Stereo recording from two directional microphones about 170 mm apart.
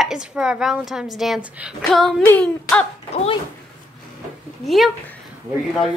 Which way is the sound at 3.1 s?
35° left (ahead or behind).